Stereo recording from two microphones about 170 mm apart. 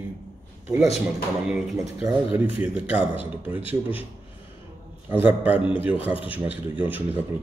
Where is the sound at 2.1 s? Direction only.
10° right (ahead or behind).